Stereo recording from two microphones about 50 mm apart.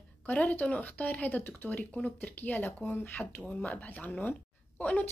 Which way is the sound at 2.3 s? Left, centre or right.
Left.